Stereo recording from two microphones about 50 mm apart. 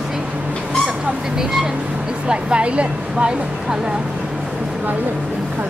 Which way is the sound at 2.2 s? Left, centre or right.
Right.